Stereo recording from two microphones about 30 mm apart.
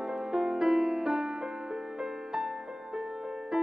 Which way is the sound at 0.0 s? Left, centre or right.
Centre.